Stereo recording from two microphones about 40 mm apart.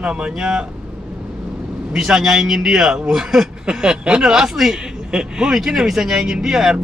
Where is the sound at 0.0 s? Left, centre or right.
Right.